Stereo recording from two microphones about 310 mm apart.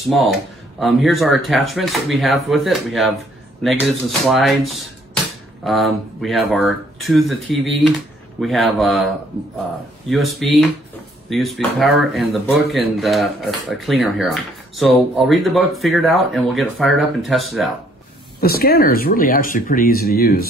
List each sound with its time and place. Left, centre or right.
0.1 s speech: centre
18.4 s speech: left